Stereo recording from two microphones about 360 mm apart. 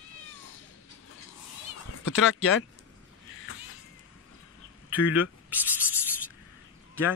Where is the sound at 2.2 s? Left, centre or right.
Left.